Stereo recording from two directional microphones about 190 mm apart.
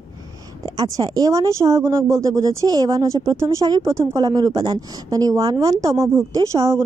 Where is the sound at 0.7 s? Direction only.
20° right (ahead or behind).